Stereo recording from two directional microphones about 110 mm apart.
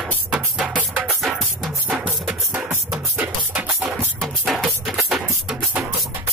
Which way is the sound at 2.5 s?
15° right (ahead or behind).